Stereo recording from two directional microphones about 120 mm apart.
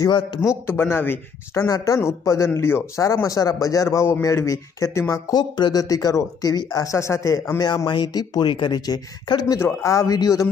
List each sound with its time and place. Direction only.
0.7 s speech: 20° left (ahead or behind)
9.6 s speech: 20° left (ahead or behind)